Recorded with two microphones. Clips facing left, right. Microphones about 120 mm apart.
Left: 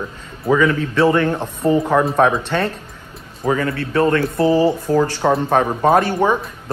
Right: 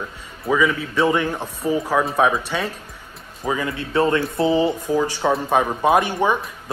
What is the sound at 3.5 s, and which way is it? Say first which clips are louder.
A man's voice: left 5 dB; 15° right (ahead or behind).